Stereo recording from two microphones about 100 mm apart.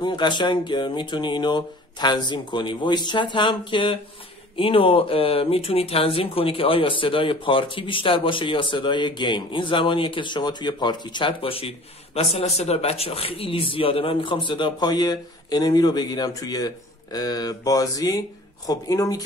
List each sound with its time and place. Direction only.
0.0 s speech: 50° left (ahead or behind)